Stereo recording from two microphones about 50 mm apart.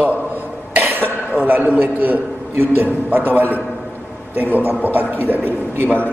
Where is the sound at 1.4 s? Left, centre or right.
Right.